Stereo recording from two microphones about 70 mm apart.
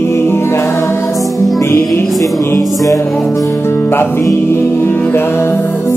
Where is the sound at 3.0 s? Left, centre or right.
Centre.